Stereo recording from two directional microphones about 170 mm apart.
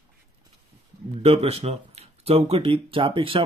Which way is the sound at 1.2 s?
35° right (ahead or behind).